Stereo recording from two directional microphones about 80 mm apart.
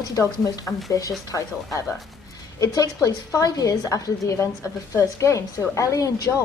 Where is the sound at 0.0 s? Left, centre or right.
Left.